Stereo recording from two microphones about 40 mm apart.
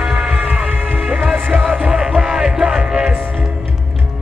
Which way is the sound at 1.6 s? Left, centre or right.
Centre.